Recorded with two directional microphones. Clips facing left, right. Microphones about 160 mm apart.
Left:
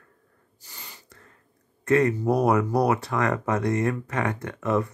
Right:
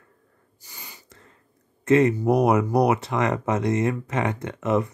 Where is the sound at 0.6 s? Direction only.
10° right (ahead or behind).